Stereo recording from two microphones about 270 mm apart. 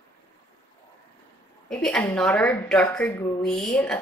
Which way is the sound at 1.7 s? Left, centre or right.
Centre.